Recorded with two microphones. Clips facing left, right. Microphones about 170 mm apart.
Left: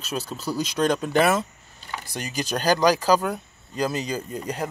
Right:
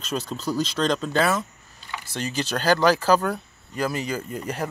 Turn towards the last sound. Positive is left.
turn(degrees=15)  # may be behind; listen again after turning